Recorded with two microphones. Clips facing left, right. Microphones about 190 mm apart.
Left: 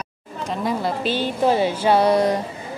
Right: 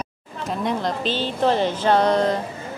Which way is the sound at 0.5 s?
5° left (ahead or behind).